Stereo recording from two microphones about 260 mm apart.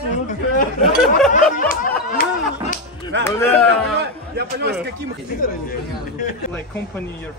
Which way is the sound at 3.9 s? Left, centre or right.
Right.